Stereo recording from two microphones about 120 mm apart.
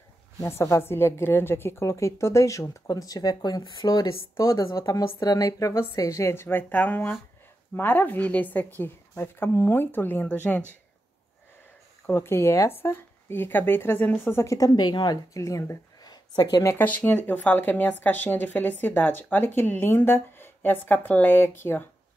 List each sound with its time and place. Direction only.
0.4 s speech: 20° left (ahead or behind); by 4.2 s 40° left (ahead or behind)
4.4 s speech: 25° left (ahead or behind)
12.1 s speech: 20° left (ahead or behind)
16.7 s speech: 15° left (ahead or behind)